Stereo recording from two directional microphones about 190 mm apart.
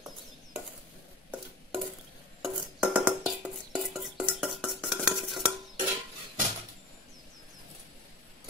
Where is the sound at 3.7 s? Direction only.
5° right (ahead or behind).